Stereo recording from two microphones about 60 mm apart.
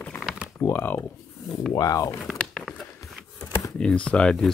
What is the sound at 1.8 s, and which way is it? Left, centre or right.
Speech, left.